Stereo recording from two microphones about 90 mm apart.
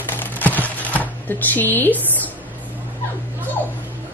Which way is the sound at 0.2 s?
20° left (ahead or behind).